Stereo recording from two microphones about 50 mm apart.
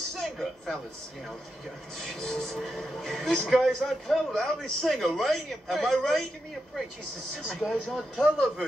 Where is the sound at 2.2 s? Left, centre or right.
Centre.